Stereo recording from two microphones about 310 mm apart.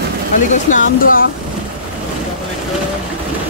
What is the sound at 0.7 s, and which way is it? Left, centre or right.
Speech, left.